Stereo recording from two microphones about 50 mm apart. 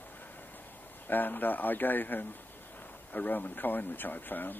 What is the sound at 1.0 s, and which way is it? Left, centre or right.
Speech, left.